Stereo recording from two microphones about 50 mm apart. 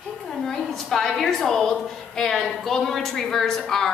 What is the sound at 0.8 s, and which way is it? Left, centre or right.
A woman's voice, centre.